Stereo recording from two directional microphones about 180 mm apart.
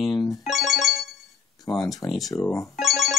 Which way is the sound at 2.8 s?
Centre (ahead or behind).